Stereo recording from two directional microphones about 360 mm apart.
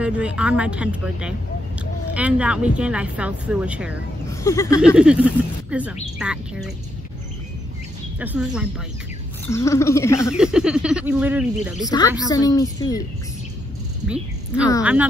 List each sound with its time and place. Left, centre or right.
0.0 s speech: centre
4.3 s speech: centre
4.8 s speech: centre
8.2 s speech: centre
9.5 s speech: centre
10.3 s speech: centre
11.8 s speech: centre
14.0 s speech: centre